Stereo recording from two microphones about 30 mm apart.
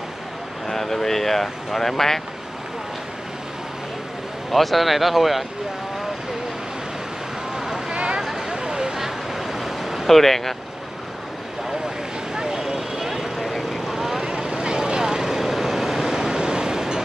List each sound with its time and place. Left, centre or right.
0.7 s vehicle: centre
4.5 s speech: centre
7.5 s a sound: centre
7.9 s a sound: right
8.2 s vehicle: centre
10.0 s speech: centre
12.4 s vehicle: centre
13.4 s vehicle: centre
14.2 s vehicle: right